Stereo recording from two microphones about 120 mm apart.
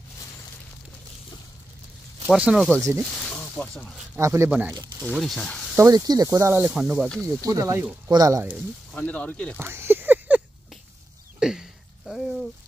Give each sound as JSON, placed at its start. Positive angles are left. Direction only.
{"t": 2.3, "sound": "speech", "side_deg": -10}
{"t": 2.8, "sound": "speech", "side_deg": -25}
{"t": 3.2, "sound": "speech", "side_deg": 5}
{"t": 4.2, "sound": "speech", "side_deg": -20}
{"t": 4.5, "sound": "speech", "side_deg": -10}
{"t": 5.1, "sound": "speech", "side_deg": 0}
{"t": 5.8, "sound": "speech", "side_deg": -30}
{"t": 6.7, "sound": "speech", "side_deg": -10}
{"t": 7.4, "sound": "speech", "side_deg": -30}
{"t": 8.9, "sound": "speech", "side_deg": 10}
{"t": 9.6, "sound": "a sound", "side_deg": -20}
{"t": 11.3, "sound": "a sound", "side_deg": -5}